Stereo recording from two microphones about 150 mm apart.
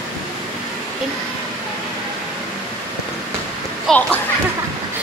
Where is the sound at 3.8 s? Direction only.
10° left (ahead or behind).